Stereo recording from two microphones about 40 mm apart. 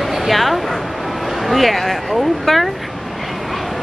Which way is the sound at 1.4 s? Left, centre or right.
Centre.